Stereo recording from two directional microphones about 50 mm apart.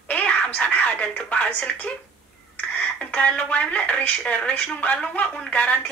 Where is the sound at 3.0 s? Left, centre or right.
Left.